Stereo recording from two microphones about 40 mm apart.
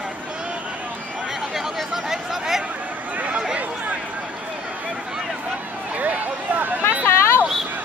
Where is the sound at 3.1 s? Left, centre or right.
Right.